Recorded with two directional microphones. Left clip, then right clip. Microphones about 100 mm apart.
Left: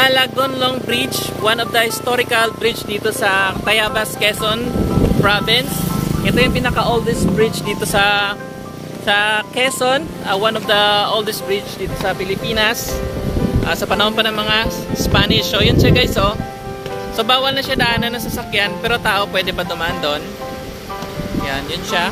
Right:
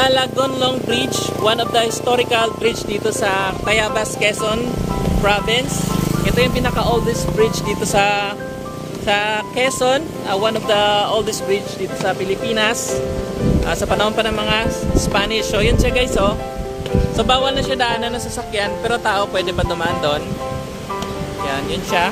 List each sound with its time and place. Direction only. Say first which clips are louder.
0.0 s speech: left 2 dB; 5° left (ahead or behind)
15.9 s speech: left 1 dB; 20° left (ahead or behind)
17.7 s speech: left 2 dB; 5° right (ahead or behind)
21.5 s speech: right 2 dB; 5° right (ahead or behind)